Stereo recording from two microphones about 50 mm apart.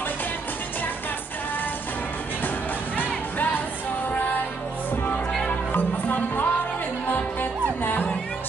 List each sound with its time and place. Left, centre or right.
3.0 s music: left
5.5 s music: left
7.8 s music: left